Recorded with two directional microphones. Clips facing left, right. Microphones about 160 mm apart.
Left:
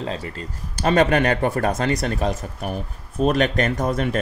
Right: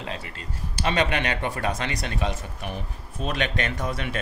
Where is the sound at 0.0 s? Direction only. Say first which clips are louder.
Left 6 dB; 35° left (ahead or behind).